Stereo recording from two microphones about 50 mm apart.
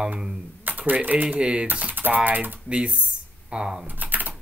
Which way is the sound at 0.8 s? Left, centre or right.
Right.